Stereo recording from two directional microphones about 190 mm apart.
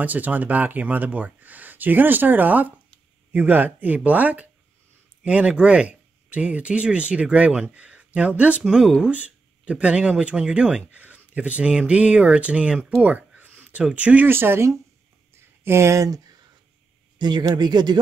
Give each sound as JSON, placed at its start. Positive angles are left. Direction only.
{"t": 0.0, "sound": "speech", "side_deg": -10}
{"t": 15.3, "sound": "a sound", "side_deg": -15}
{"t": 17.2, "sound": "speech", "side_deg": -20}